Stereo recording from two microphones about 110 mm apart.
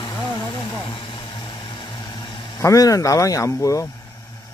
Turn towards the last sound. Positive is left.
turn(degrees=30)  # may be behind; listen again after turning